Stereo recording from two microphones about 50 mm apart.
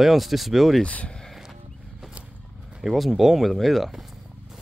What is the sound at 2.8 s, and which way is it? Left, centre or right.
Speech, centre.